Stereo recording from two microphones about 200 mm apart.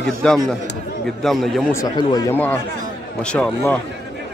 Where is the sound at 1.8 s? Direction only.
20° left (ahead or behind).